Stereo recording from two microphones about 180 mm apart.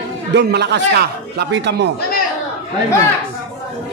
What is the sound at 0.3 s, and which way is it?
A man's voice, 70° right (ahead or behind).